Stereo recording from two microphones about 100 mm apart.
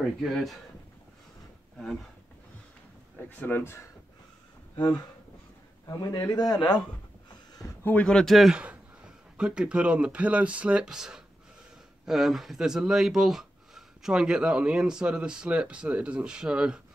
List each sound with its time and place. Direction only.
0.2 s speech: centre (ahead or behind)
3.2 s speech: 15° left (ahead or behind)
4.7 s a man's voice: 40° left (ahead or behind)
7.8 s a man's voice: 15° left (ahead or behind); by 16.8 s 10° right (ahead or behind)